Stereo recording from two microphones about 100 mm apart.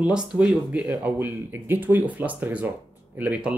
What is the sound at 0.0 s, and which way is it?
Speech, 10° right (ahead or behind).